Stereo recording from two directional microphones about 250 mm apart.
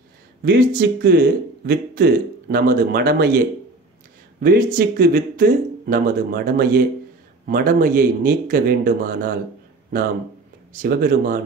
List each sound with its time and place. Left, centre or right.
0.4 s speech: right
10.7 s speech: right